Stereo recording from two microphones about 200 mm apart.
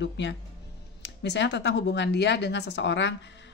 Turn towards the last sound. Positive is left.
turn(degrees=65)  # may be behind; listen again after turning